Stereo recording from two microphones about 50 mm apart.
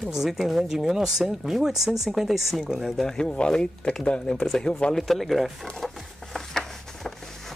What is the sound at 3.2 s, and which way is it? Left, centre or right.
Speech, centre.